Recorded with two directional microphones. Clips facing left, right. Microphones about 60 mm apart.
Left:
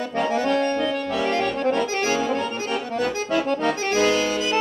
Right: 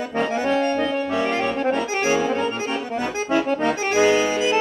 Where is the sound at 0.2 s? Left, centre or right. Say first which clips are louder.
Even; right.